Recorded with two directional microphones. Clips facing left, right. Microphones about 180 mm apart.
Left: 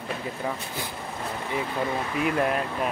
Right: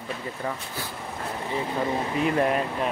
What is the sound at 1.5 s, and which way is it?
Speech, 25° right (ahead or behind).